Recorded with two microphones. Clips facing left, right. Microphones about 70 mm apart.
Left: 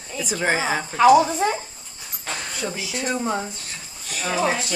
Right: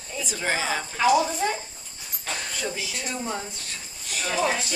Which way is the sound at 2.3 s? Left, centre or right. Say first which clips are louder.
Left 1 dB; centre.